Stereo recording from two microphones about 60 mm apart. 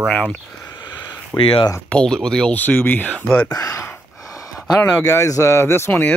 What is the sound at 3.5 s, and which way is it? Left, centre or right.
Speech, left.